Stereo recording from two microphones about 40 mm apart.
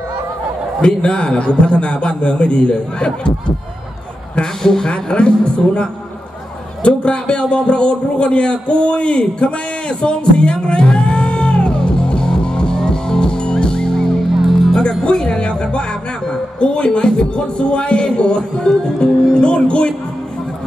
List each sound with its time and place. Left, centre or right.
0.7 s a man's voice: left
4.4 s speech: centre
4.9 s a man's voice: left
12.3 s music: left
14.3 s music: centre
14.8 s music: left
16.5 s a man's voice: left